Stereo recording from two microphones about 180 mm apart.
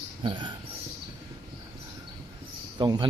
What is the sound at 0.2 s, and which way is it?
Speech, 25° right (ahead or behind).